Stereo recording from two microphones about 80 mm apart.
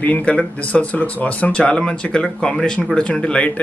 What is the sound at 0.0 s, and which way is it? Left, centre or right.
Speech, centre.